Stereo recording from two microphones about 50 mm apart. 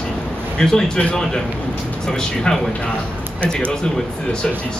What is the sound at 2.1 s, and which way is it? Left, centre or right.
Speech, centre.